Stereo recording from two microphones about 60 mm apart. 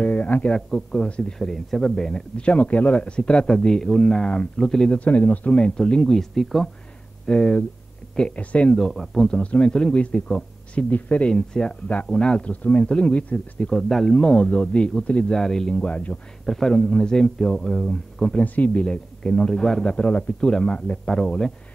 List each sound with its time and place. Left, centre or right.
0.0 s a sound: left
0.5 s speech: centre
1.4 s speech: centre
5.0 s speech: left; by 6.7 s centre
7.2 s speech: centre
8.7 s speech: centre
9.3 s speech: centre
13.7 s speech: centre
15.3 s speech: centre
16.4 s a man's voice: centre
18.3 s speech: left; by 21.5 s centre